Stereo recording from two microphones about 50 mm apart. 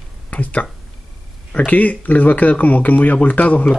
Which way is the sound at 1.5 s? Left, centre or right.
Left.